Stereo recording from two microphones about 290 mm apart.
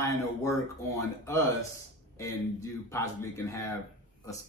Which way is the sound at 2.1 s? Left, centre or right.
Centre.